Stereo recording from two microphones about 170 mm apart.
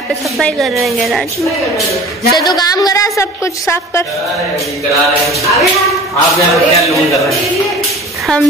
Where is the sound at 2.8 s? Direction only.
20° left (ahead or behind).